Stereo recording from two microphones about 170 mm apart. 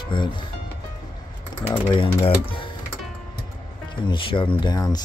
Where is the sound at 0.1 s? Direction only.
30° left (ahead or behind).